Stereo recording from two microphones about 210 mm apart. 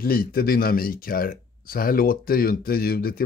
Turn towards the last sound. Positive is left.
turn(degrees=45)  # may be behind; listen again after turning